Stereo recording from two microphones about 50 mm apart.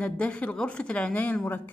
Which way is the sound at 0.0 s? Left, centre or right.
Left.